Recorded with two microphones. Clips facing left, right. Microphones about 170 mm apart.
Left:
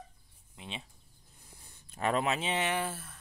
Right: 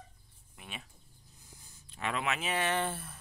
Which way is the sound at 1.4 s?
60° left (ahead or behind).